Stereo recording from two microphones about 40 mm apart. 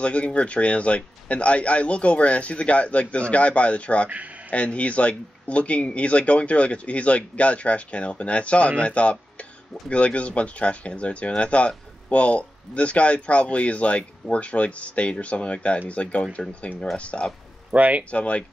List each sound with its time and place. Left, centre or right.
0.0 s speech: left
17.6 s speech: right
18.1 s speech: left